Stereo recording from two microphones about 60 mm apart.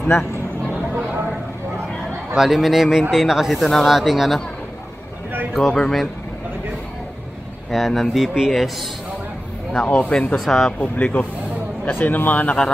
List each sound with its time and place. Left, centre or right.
2.3 s a man's voice: centre
5.5 s a man's voice: centre
7.7 s a man's voice: centre
9.7 s speech: centre
10.4 s a man's voice: centre
10.8 s speech: left